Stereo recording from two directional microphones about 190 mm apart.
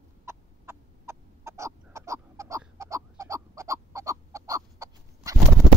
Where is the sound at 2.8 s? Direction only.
15° right (ahead or behind).